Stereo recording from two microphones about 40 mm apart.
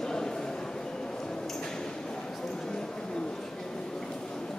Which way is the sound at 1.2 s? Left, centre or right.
Centre.